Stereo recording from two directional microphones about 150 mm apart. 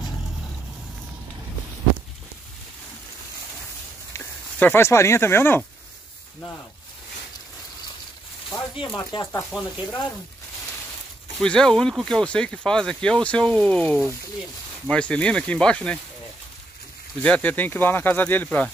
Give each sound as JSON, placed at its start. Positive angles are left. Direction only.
{"t": 4.1, "sound": "speech", "side_deg": 15}
{"t": 8.5, "sound": "a sound", "side_deg": 35}
{"t": 9.1, "sound": "speech", "side_deg": 20}
{"t": 11.3, "sound": "speech", "side_deg": 5}
{"t": 17.2, "sound": "speech", "side_deg": 10}